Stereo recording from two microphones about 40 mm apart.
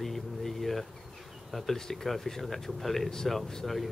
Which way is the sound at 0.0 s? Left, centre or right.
Centre.